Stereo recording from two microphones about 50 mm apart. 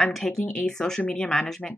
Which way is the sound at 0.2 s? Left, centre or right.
Centre.